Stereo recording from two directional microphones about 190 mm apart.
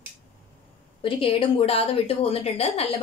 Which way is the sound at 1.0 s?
30° left (ahead or behind).